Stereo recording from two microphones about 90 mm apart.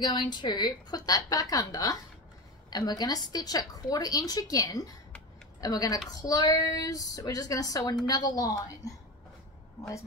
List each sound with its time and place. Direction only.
0.0 s a woman's voice: 55° left (ahead or behind)